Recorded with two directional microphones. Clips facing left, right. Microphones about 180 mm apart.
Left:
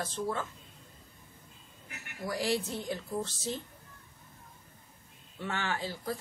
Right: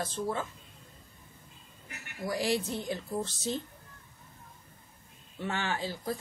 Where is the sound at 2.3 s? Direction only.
20° right (ahead or behind).